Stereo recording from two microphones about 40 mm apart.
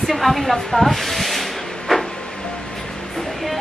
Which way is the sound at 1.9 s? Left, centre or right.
Centre.